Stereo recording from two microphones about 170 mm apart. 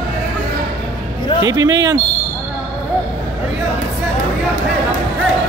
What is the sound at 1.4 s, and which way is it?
Speech, 20° right (ahead or behind).